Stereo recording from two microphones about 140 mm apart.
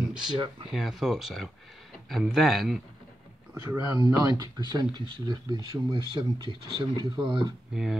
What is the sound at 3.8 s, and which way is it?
Speech, 25° right (ahead or behind).